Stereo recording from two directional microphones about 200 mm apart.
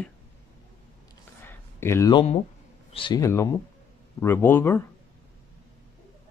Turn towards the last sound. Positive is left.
turn(degrees=10)  # may be behind; listen again after turning